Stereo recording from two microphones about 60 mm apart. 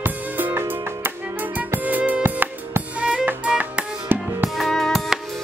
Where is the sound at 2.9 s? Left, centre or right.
Centre.